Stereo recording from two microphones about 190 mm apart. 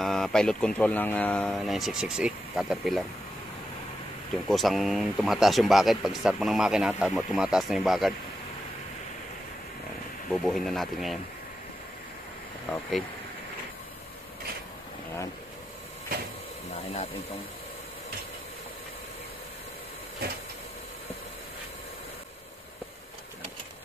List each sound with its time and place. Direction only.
0.0 s speech: centre (ahead or behind)
4.5 s speech: centre (ahead or behind)
10.3 s speech: centre (ahead or behind)
16.7 s speech: 30° left (ahead or behind)